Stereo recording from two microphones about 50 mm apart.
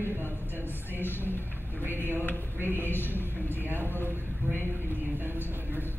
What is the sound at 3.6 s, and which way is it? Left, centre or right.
A man's voice, right.